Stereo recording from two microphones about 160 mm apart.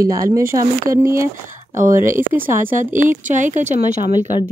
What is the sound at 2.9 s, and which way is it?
Speech, 55° right (ahead or behind).